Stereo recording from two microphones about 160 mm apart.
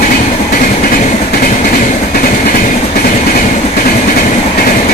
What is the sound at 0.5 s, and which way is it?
Train, 60° left (ahead or behind).